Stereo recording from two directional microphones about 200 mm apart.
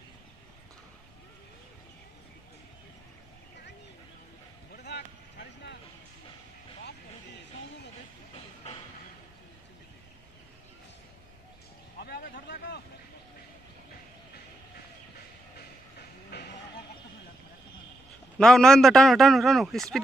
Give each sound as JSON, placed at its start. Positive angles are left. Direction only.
{"t": 4.7, "sound": "vehicle", "side_deg": 55}
{"t": 12.0, "sound": "vehicle", "side_deg": 50}
{"t": 16.3, "sound": "a sound", "side_deg": 55}
{"t": 18.4, "sound": "a man's voice", "side_deg": 5}